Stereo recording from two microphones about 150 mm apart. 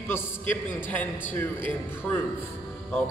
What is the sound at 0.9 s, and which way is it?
Speech, 15° left (ahead or behind).